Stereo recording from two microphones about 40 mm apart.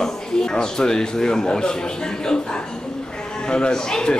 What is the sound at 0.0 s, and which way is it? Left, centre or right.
A man's voice, centre.